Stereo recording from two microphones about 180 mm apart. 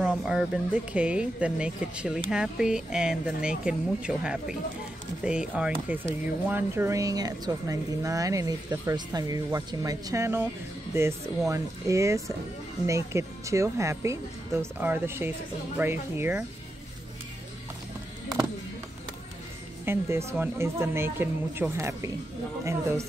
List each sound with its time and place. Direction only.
0.0 s speech: centre (ahead or behind)
19.8 s speech: 15° right (ahead or behind)